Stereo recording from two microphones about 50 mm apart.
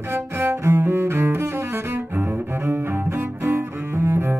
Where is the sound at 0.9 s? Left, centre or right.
Right.